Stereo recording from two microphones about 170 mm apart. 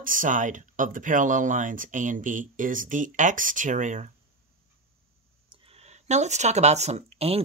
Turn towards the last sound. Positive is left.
turn(degrees=-35)  # may be behind; listen again after turning